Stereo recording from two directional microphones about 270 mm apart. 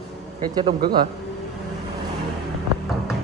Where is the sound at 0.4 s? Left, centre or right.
Centre.